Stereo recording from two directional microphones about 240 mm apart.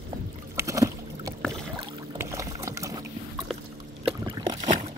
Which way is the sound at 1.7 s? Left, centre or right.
Centre.